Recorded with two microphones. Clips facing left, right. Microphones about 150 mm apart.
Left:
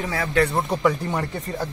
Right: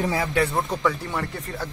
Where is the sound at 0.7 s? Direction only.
15° left (ahead or behind).